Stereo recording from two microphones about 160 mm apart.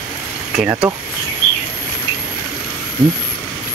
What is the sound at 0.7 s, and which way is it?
Speech, 15° right (ahead or behind).